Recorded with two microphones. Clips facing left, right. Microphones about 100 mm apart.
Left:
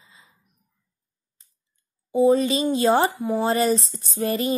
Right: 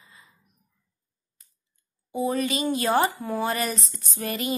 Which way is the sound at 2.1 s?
25° left (ahead or behind).